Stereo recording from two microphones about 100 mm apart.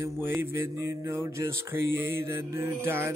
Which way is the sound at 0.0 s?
25° right (ahead or behind).